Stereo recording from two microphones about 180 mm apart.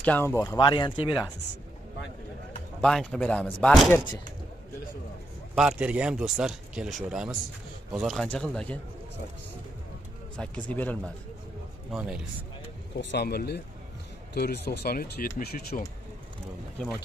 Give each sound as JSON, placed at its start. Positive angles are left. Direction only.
{"t": 0.0, "sound": "speech", "side_deg": 10}
{"t": 0.6, "sound": "speech", "side_deg": 25}
{"t": 2.8, "sound": "speech", "side_deg": 0}
{"t": 5.5, "sound": "speech", "side_deg": -5}
{"t": 10.3, "sound": "speech", "side_deg": 5}
{"t": 11.9, "sound": "speech", "side_deg": -5}
{"t": 13.0, "sound": "speech", "side_deg": 70}